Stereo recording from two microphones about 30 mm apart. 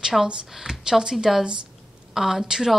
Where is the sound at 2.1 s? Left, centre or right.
Centre.